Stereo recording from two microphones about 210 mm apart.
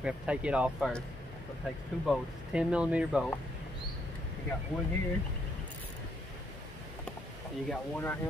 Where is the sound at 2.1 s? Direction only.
5° right (ahead or behind).